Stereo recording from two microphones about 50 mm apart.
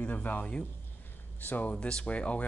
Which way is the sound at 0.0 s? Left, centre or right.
Left.